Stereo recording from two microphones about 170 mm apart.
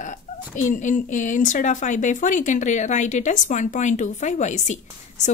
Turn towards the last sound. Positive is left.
turn(degrees=45)  # may be behind; listen again after turning